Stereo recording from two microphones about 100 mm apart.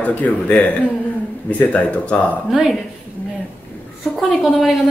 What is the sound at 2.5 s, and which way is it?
Speech, centre (ahead or behind).